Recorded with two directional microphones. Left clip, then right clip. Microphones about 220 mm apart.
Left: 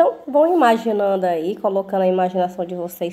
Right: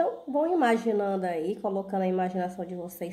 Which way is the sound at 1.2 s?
65° left (ahead or behind).